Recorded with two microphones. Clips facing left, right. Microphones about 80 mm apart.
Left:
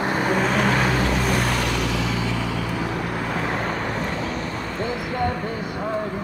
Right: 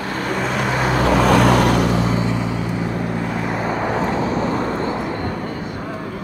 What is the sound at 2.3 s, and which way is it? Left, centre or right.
Vehicle, right.